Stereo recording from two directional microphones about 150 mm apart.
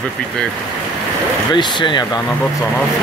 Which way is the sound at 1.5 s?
30° left (ahead or behind).